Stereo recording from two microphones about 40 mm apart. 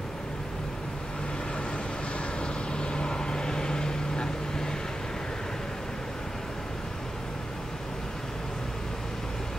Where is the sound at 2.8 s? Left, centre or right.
Left.